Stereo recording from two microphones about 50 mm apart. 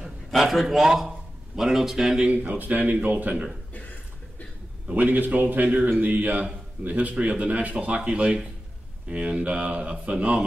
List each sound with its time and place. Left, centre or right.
0.3 s a man's voice: centre
2.3 s a man's voice: right
4.8 s a man's voice: right